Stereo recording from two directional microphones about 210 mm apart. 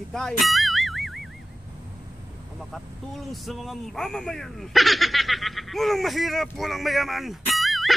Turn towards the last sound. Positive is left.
turn(degrees=0)  # may be behind; listen again after turning